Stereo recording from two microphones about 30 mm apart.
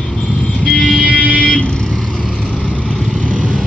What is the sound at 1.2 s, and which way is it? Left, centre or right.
Vehicle, left.